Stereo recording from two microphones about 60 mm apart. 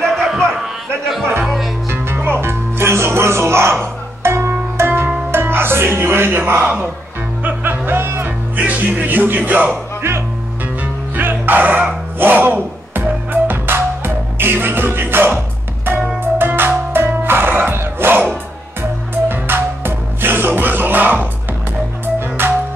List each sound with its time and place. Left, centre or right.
1.4 s music: centre
1.9 s music: right
6.6 s music: right
8.6 s music: right
10.8 s music: right
22.4 s music: right